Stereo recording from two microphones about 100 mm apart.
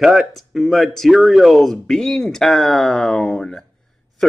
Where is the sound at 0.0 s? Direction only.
Centre (ahead or behind).